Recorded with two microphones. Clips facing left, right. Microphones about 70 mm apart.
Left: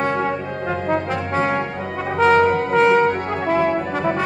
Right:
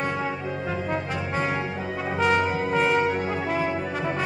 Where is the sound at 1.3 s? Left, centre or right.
Centre.